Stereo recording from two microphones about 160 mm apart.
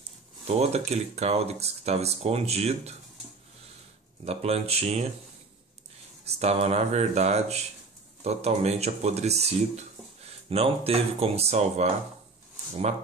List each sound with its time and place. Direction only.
0.5 s speech: 40° right (ahead or behind)
4.2 s speech: 40° right (ahead or behind)
6.4 s mantra: 40° right (ahead or behind)
8.2 s speech: 40° right (ahead or behind)